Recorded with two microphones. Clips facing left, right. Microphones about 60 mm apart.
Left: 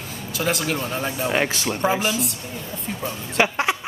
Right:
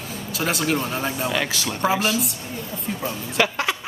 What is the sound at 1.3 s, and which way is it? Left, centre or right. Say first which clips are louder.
Speech: left 3 dB; left.